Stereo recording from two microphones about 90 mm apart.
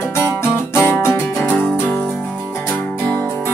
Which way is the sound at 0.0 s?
25° left (ahead or behind).